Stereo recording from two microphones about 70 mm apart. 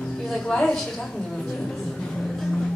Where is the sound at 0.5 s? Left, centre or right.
Centre.